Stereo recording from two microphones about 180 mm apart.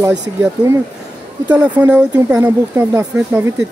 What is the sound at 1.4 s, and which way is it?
Speech, 5° right (ahead or behind).